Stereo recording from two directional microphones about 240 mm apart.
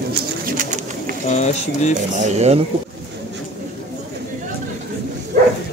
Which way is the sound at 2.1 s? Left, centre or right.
Right.